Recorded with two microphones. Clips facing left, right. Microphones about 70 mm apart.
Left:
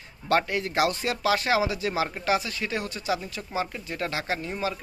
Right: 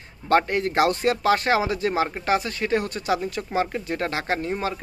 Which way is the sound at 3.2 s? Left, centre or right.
Right.